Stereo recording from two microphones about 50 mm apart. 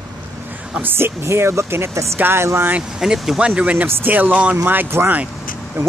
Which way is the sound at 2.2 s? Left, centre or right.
Right.